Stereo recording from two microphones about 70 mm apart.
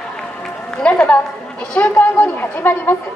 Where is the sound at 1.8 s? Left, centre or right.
Left.